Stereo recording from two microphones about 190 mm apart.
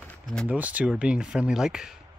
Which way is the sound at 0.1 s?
5° left (ahead or behind).